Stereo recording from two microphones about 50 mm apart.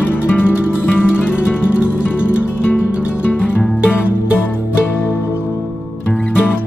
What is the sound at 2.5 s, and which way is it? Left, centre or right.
Music, left.